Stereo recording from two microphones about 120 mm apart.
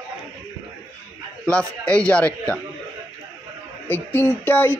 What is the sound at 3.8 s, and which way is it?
Speech, 15° left (ahead or behind).